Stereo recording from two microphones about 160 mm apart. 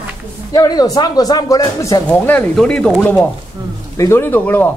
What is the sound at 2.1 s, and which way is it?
Speech, 10° left (ahead or behind).